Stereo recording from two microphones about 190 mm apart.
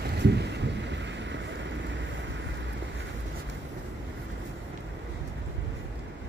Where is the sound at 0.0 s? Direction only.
60° right (ahead or behind).